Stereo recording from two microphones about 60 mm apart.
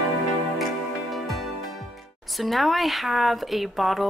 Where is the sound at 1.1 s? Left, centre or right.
Centre.